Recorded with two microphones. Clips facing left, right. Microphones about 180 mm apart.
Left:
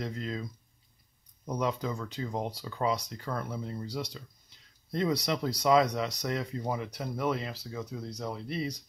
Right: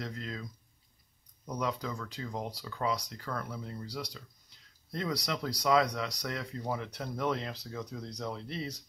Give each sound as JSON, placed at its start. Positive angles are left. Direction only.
{"t": 0.0, "sound": "speech", "side_deg": 25}